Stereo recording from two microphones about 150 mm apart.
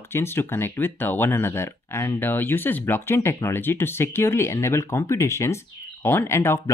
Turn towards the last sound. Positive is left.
turn(degrees=15)  # may be behind; listen again after turning